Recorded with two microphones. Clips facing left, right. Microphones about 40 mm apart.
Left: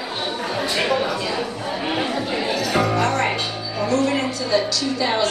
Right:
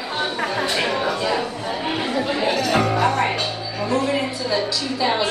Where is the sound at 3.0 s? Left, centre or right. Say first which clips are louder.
Right 1 dB; centre.